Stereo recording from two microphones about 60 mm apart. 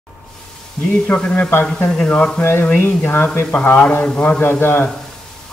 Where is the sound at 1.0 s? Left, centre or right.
Left.